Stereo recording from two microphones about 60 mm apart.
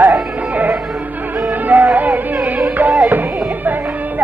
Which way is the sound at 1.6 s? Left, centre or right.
Right.